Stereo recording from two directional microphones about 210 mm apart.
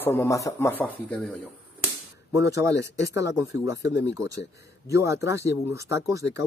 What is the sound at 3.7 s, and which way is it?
Speech, 55° left (ahead or behind).